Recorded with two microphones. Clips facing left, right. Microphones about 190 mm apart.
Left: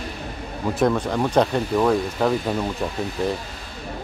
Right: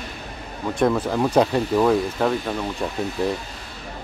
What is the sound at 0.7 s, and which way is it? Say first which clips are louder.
Speech: even; centre (ahead or behind).